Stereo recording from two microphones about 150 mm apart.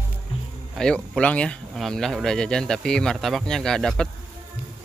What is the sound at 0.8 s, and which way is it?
Speech, 5° left (ahead or behind).